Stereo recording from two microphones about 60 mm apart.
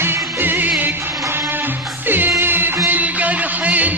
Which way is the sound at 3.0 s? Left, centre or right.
Right.